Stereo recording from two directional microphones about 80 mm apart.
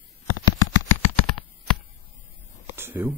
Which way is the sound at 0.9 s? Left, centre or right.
Left.